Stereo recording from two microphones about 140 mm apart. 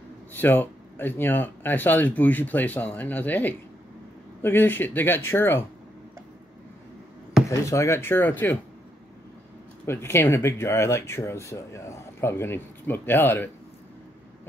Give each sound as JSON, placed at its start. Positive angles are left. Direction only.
{"t": 0.3, "sound": "speech", "side_deg": 15}
{"t": 7.4, "sound": "speech", "side_deg": 20}
{"t": 9.8, "sound": "speech", "side_deg": 20}